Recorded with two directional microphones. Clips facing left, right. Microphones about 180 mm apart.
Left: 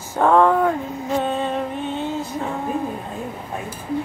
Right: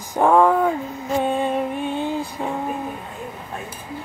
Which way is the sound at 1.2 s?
10° right (ahead or behind).